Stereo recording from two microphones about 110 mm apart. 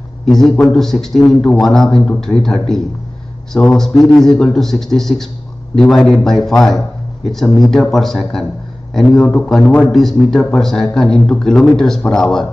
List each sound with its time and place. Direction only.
0.2 s a man's voice: centre (ahead or behind)